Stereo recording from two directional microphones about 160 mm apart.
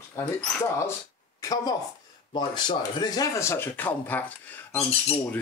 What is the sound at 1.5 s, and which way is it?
Speech, 25° left (ahead or behind).